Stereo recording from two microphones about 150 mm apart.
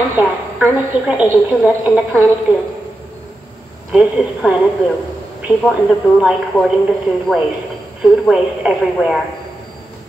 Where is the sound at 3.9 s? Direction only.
10° right (ahead or behind).